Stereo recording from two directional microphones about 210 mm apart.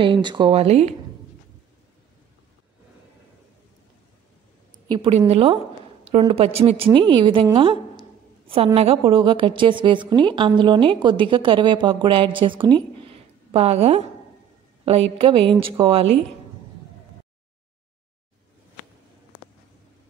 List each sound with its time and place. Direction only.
0.0 s a woman's voice: 20° right (ahead or behind)
4.8 s a woman's voice: 25° right (ahead or behind)